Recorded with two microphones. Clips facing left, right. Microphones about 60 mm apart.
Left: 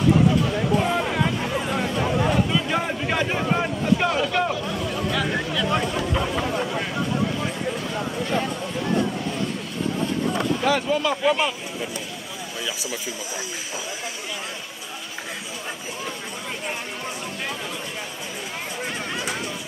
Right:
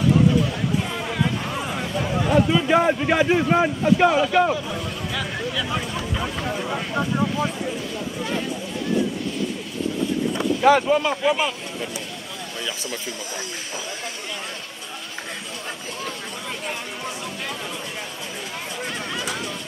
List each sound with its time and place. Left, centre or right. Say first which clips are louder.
2.5 s a man's voice: right 6 dB; centre
10.6 s speech: right 8 dB; right
11.2 s speech: even; centre
19.1 s vehicle: even; centre